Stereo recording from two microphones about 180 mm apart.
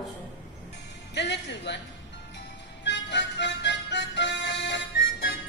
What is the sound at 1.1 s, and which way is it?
Speech, 70° left (ahead or behind).